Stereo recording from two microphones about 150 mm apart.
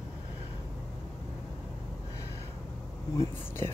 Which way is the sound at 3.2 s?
15° left (ahead or behind).